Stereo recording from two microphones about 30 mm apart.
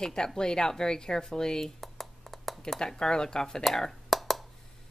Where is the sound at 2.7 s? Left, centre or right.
Left.